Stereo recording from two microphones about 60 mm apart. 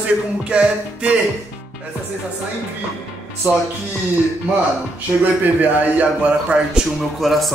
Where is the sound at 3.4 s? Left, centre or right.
Right.